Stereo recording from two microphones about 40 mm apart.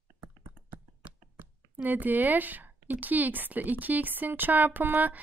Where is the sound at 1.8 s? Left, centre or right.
Right.